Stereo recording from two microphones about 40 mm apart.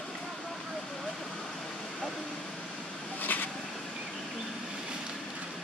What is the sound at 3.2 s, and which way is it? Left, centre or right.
Vehicle, left.